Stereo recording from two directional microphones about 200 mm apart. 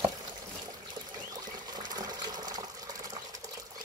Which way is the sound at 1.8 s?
20° right (ahead or behind).